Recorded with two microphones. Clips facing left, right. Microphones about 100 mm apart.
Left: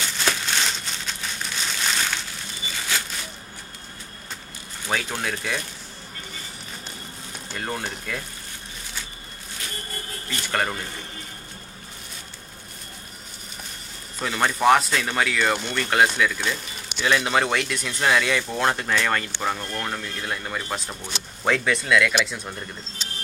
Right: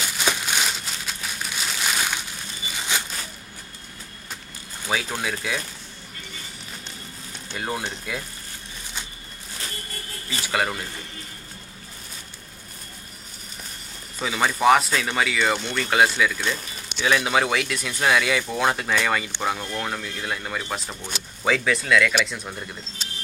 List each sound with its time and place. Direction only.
0.0 s crumpling: 10° right (ahead or behind)
2.9 s a sound: 20° right (ahead or behind)
4.8 s speech: 5° right (ahead or behind)
7.5 s speech: 10° right (ahead or behind)
10.4 s speech: 5° right (ahead or behind)
14.2 s speech: centre (ahead or behind)